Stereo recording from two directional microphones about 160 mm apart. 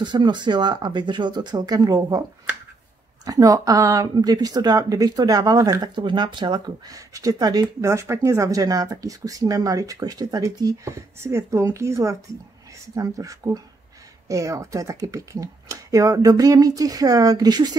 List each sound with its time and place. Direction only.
0.0 s speech: 30° right (ahead or behind)
3.3 s speech: 20° right (ahead or behind)